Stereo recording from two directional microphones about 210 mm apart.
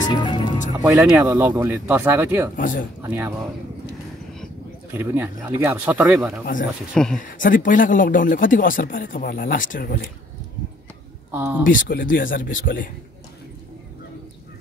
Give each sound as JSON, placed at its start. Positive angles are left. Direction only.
{"t": 0.0, "sound": "music", "side_deg": 20}
{"t": 0.8, "sound": "speech", "side_deg": -10}
{"t": 2.5, "sound": "speech", "side_deg": 40}
{"t": 3.0, "sound": "speech", "side_deg": -10}
{"t": 4.9, "sound": "speech", "side_deg": -10}
{"t": 7.2, "sound": "speech", "side_deg": 40}
{"t": 11.3, "sound": "speech", "side_deg": -10}
{"t": 11.6, "sound": "speech", "side_deg": 40}